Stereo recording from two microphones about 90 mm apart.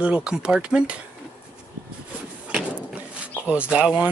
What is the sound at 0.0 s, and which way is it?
Speech, 10° right (ahead or behind).